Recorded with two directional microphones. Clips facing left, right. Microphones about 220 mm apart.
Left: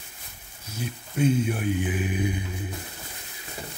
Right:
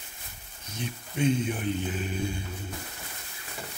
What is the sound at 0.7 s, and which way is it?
Speech, 5° left (ahead or behind).